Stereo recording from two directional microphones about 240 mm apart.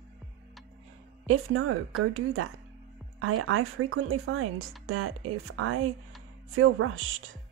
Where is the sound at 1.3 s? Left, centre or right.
Right.